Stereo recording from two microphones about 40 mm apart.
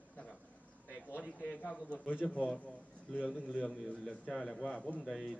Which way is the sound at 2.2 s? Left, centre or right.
Centre.